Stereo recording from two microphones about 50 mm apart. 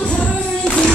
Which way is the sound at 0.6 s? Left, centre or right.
Centre.